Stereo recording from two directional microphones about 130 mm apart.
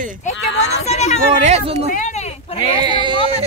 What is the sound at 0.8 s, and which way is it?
Speech, 60° left (ahead or behind).